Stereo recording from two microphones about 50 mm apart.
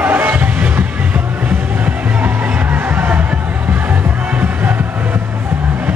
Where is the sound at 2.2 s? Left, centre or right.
Right.